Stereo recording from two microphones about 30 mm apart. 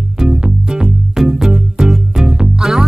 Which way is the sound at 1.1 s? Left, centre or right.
Centre.